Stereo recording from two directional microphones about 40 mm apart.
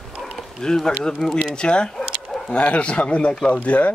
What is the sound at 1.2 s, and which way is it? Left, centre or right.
Speech, centre.